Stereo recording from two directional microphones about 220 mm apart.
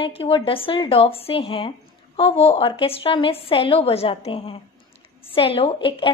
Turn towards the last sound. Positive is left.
turn(degrees=25)  # may be behind; listen again after turning